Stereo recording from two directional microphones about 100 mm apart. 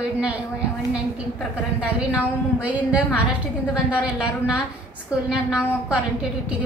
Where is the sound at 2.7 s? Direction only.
10° right (ahead or behind).